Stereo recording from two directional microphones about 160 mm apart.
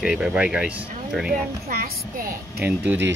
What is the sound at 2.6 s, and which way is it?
Speech, 10° right (ahead or behind).